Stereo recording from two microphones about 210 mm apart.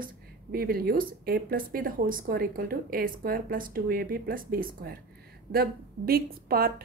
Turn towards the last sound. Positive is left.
turn(degrees=-45)  # may be behind; listen again after turning